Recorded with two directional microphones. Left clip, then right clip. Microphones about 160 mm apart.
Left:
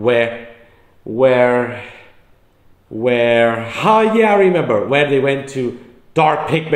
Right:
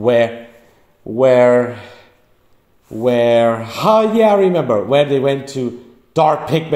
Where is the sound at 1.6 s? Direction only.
55° right (ahead or behind).